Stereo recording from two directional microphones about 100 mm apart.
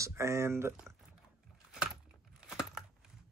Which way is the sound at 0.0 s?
30° right (ahead or behind).